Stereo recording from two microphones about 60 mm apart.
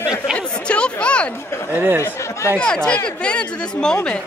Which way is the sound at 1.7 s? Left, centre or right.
Right.